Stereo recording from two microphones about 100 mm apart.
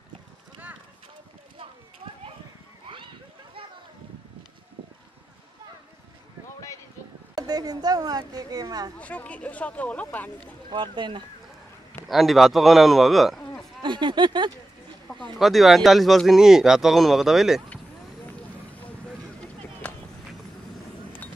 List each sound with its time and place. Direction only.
7.3 s speech: 40° right (ahead or behind)
8.9 s speech: 15° left (ahead or behind)
10.7 s speech: 50° right (ahead or behind)
12.1 s speech: centre (ahead or behind)
13.4 s a sound: 5° left (ahead or behind)
13.8 s speech: 50° right (ahead or behind)
15.3 s speech: centre (ahead or behind)
18.8 s a sound: 15° left (ahead or behind)